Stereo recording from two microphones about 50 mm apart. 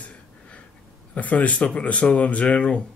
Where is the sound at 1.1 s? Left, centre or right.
Left.